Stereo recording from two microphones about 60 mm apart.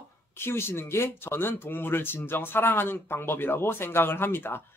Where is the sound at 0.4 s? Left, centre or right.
Left.